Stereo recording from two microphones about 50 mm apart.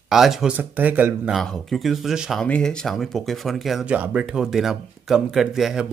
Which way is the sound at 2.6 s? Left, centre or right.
Centre.